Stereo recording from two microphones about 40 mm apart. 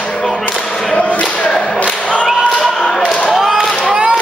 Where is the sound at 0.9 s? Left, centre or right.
Left.